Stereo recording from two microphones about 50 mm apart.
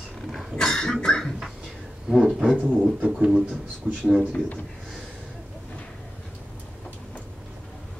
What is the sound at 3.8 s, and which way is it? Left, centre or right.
Speech, centre.